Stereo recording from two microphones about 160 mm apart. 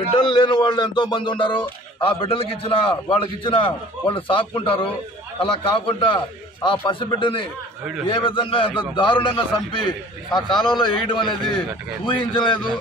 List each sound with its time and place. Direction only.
0.2 s speech: 30° left (ahead or behind)